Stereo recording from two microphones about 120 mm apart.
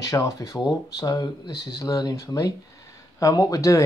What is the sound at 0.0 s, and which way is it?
Speech, 30° left (ahead or behind).